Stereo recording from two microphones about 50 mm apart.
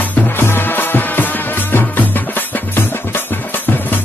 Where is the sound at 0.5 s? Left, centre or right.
Left.